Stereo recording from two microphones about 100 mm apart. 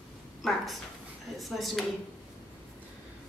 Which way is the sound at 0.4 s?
Centre (ahead or behind).